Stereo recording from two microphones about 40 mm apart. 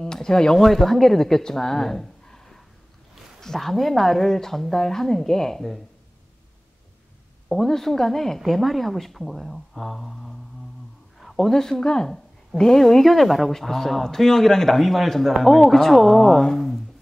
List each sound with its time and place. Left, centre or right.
0.0 s speech: centre
0.6 s a woman's voice: centre
7.4 s a woman's voice: centre
11.1 s a sound: centre
11.8 s a woman's voice: centre
16.5 s a sound: centre